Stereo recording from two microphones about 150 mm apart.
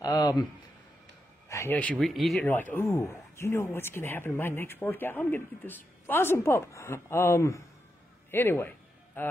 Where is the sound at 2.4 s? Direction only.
15° left (ahead or behind).